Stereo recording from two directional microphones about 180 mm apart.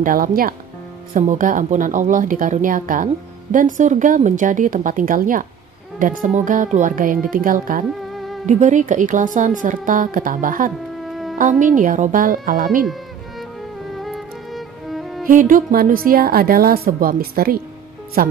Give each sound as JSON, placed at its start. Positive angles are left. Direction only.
{"t": 0.0, "sound": "a woman's voice", "side_deg": -50}
{"t": 8.1, "sound": "music", "side_deg": 0}
{"t": 8.5, "sound": "a woman's voice", "side_deg": -40}
{"t": 11.0, "sound": "music", "side_deg": 0}
{"t": 11.3, "sound": "a woman's voice", "side_deg": -45}
{"t": 13.9, "sound": "music", "side_deg": 0}
{"t": 15.2, "sound": "a woman's voice", "side_deg": -50}